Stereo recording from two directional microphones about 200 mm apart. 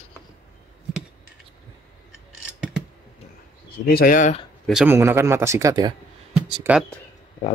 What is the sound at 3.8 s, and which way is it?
Speech, 45° left (ahead or behind).